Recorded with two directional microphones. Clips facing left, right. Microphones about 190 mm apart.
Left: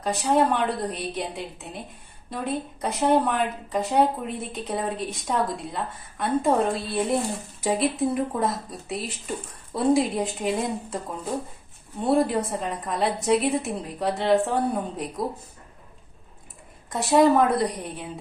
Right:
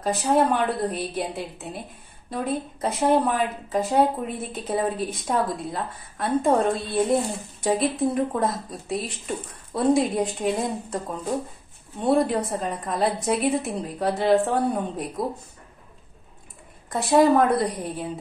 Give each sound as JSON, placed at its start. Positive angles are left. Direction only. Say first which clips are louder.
{"t": 0.0, "sound": "speech", "louder": "right 1 dB", "side_deg": 0}
{"t": 12.1, "sound": "speech", "louder": "right 1 dB", "side_deg": 0}
{"t": 16.9, "sound": "speech", "louder": "right 1 dB", "side_deg": 0}